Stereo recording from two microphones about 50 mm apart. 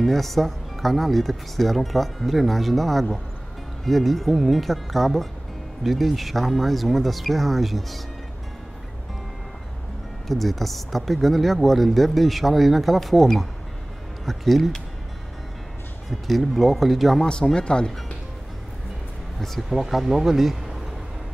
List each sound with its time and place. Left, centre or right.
0.0 s speech: centre
10.2 s speech: centre
16.1 s speech: centre
17.3 s speech: centre
19.7 s speech: centre